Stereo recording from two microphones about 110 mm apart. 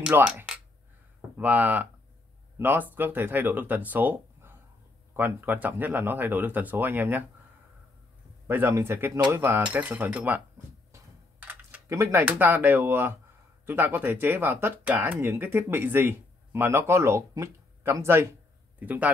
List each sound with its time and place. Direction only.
0.1 s speech: 15° right (ahead or behind)
8.5 s speech: 20° right (ahead or behind)
11.3 s typing: 15° right (ahead or behind)
11.9 s a man's voice: 25° right (ahead or behind)